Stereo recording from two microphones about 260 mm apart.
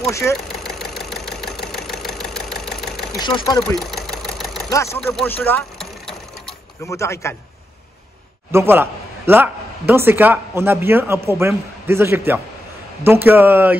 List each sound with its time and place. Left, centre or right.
0.0 s speech: centre
0.7 s engine: centre
3.2 s speech: centre
3.5 s engine: centre
4.9 s mechanisms: centre
8.5 s a man's voice: centre